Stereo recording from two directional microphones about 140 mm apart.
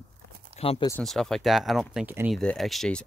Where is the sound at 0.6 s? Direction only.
45° left (ahead or behind).